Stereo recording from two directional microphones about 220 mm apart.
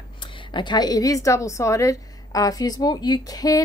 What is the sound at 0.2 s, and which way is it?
A woman's voice, 20° left (ahead or behind).